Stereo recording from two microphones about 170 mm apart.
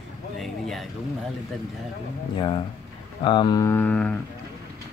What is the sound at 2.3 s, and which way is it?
Speech, 30° left (ahead or behind).